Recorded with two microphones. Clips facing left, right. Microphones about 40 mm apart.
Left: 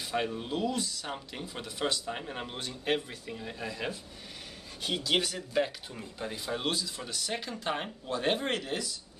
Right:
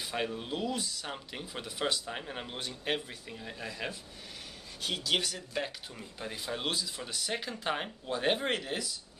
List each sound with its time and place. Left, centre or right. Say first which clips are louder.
0.0 s speech: left 2 dB; centre